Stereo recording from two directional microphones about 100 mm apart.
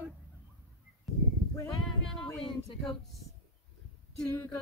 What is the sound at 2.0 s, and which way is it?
Speech, 5° left (ahead or behind).